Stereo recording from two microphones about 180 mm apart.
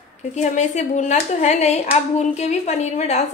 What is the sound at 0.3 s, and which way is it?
Speech, 40° left (ahead or behind).